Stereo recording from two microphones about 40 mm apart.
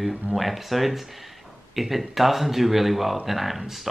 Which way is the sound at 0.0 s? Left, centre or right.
Centre.